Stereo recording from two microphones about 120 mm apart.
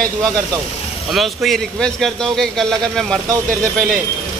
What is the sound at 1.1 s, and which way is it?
A man's voice, centre (ahead or behind).